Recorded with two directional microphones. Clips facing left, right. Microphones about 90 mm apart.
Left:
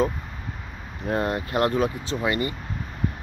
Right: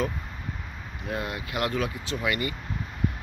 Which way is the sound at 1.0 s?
40° left (ahead or behind).